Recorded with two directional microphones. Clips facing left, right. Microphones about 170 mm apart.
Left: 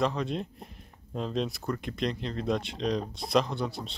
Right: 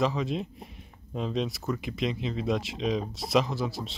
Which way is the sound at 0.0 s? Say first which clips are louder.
Right 1 dB; centre (ahead or behind).